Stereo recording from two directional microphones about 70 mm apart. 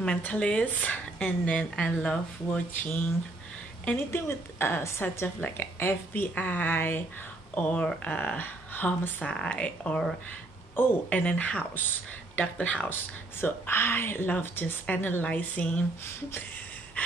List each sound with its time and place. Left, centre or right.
0.0 s speech: centre
4.1 s a woman's voice: left
9.2 s a woman's voice: centre
13.4 s a woman's voice: left